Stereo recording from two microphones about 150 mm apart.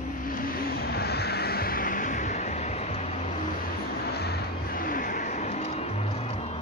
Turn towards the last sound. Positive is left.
turn(degrees=45)  # may be behind; listen again after turning